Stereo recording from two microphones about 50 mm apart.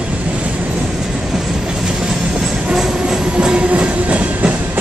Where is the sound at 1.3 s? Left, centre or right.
Centre.